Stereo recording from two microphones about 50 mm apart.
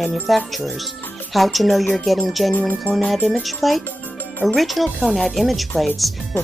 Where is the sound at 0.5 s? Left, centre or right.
Centre.